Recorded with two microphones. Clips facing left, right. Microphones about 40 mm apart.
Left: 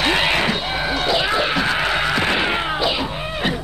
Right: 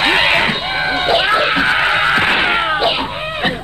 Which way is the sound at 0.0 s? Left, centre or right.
Right.